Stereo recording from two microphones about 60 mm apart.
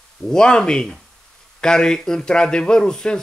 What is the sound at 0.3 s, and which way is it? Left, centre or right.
A man's voice, centre.